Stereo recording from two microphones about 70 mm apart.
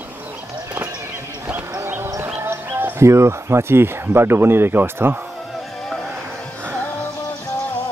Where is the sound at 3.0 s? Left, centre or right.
Right.